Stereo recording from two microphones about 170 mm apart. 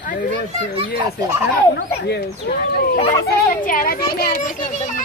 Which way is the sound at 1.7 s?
75° left (ahead or behind).